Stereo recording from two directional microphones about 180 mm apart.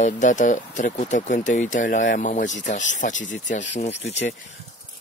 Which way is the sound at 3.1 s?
90° left.